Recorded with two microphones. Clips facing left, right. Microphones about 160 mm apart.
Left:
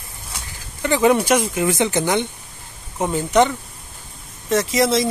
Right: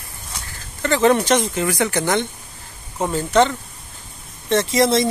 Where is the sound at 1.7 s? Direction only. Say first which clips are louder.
Left 2 dB; 20° left (ahead or behind).